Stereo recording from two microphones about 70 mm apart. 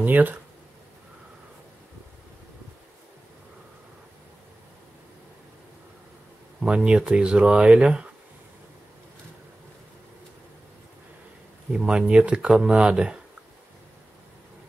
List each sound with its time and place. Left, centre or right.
0.0 s speech: right
6.6 s speech: centre
11.7 s speech: centre